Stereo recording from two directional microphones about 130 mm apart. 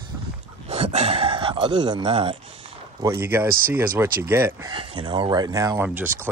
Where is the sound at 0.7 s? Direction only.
50° right (ahead or behind).